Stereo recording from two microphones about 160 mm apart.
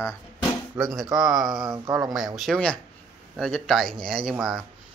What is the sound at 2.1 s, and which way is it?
Speech, centre (ahead or behind).